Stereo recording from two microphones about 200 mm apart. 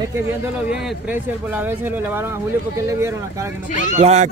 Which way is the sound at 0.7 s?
10° right (ahead or behind).